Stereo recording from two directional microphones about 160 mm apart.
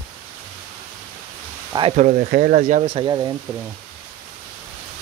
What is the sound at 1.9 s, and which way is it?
Speech, 50° right (ahead or behind).